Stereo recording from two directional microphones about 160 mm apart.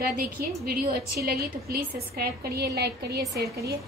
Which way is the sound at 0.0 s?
75° right (ahead or behind).